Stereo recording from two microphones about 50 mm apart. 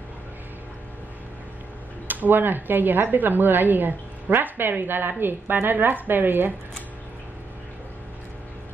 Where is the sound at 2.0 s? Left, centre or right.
Right.